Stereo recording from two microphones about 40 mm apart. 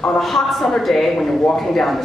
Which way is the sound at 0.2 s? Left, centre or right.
Centre.